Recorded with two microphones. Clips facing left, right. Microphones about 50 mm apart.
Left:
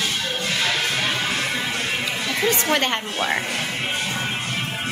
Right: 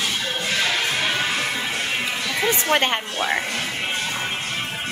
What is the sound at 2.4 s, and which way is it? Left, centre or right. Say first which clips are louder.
Speech: right 1 dB; centre.